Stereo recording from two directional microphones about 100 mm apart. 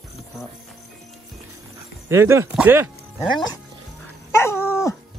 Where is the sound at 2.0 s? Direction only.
25° right (ahead or behind).